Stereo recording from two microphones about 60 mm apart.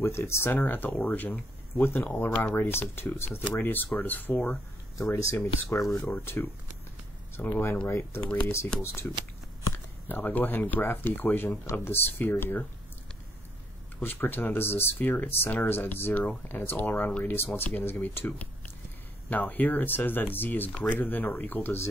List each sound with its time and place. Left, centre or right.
0.0 s speech: left
4.9 s speech: left
6.0 s speech: left
10.0 s speech: left
14.0 s speech: left